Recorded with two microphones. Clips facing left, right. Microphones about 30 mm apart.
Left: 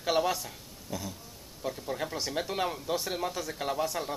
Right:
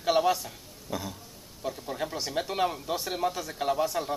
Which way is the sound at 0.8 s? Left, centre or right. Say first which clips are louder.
Right 3 dB; centre.